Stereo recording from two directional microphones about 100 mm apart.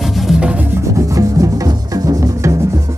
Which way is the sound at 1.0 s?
35° right (ahead or behind).